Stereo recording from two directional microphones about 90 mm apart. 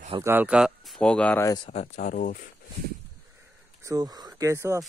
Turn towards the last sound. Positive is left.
turn(degrees=-35)  # may be behind; listen again after turning